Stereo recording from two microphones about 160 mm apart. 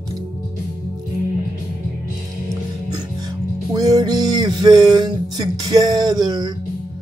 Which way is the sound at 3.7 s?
25° right (ahead or behind).